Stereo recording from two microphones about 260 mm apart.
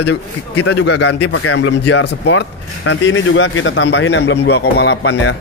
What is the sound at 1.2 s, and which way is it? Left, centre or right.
Speech, left.